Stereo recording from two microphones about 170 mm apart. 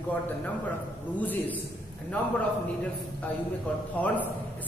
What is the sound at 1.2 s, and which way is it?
Speech, 10° left (ahead or behind).